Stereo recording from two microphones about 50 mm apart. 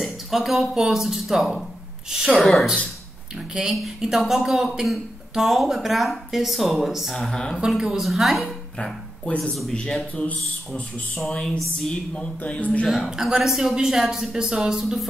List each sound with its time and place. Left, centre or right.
0.0 s a woman's voice: centre
3.3 s a woman's voice: centre
7.2 s speech: centre
7.6 s speech: centre
8.7 s a sound: centre
9.4 s speech: centre
12.1 s speech: left
12.8 s a woman's voice: centre